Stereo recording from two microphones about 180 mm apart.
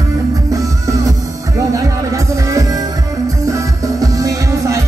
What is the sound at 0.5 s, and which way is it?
Music, 20° right (ahead or behind).